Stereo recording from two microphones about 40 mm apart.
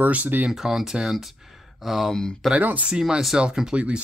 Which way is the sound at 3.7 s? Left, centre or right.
Right.